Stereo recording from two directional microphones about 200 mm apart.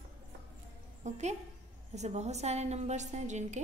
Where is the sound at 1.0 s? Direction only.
35° right (ahead or behind).